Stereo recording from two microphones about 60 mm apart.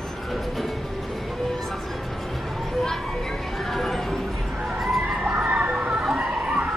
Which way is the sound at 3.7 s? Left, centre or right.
Centre.